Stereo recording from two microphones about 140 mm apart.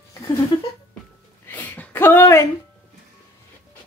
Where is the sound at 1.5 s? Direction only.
15° left (ahead or behind).